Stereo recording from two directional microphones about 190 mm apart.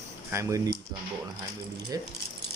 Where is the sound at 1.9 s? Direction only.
20° right (ahead or behind).